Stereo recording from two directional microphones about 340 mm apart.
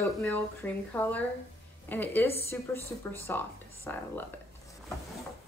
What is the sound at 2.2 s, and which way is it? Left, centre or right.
Speech, centre.